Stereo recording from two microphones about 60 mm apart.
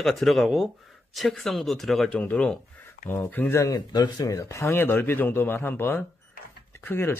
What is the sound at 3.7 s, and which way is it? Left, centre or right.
Speech, left.